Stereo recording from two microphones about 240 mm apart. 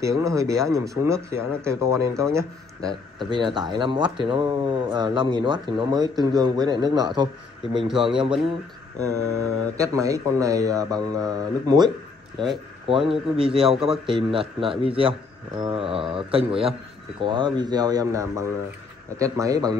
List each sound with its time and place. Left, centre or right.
0.0 s speech: centre
9.8 s speech: centre